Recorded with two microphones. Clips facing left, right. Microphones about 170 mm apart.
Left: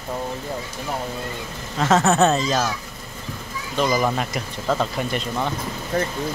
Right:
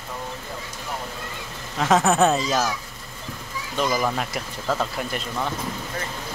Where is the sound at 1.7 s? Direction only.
10° right (ahead or behind).